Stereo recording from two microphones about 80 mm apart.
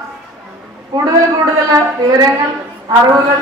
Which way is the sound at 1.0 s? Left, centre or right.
Right.